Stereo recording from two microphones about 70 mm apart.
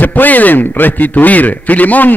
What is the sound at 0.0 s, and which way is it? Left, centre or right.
A man's voice, left.